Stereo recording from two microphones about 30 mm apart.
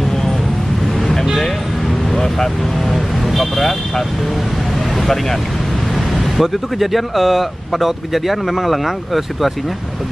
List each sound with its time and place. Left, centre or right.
1.9 s vehicle: centre
2.9 s vehicle: centre
3.5 s speech: centre
6.1 s speech: centre